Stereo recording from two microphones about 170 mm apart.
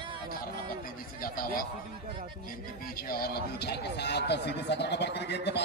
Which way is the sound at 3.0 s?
60° left (ahead or behind).